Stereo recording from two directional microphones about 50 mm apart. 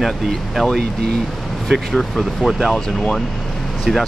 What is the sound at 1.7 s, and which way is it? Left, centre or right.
Speech, centre.